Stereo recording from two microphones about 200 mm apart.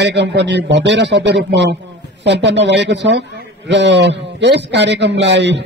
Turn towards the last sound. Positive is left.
turn(degrees=-60)  # may be behind; listen again after turning